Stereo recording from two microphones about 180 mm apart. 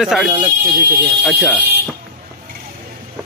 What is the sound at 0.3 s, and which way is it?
Speech, 20° right (ahead or behind).